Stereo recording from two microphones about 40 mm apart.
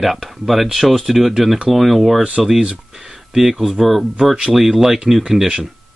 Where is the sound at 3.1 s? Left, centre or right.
Centre.